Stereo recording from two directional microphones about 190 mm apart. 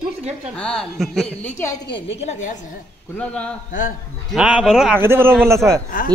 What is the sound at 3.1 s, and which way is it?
Speech, 5° left (ahead or behind).